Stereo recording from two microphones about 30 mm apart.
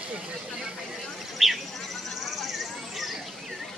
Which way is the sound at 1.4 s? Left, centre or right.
Centre.